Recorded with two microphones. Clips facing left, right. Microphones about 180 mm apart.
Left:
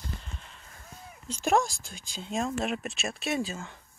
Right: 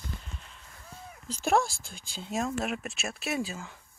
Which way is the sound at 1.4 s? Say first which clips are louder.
Left 1 dB; 15° left (ahead or behind).